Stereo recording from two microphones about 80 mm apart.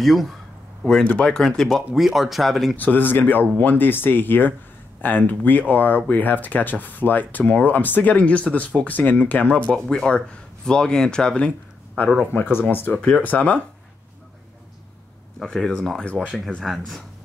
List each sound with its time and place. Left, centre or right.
0.0 s speech: centre
1.0 s speech: centre
1.3 s speech: centre
2.7 s speech: left
12.3 s speech: left
15.3 s speech: centre
16.3 s speech: centre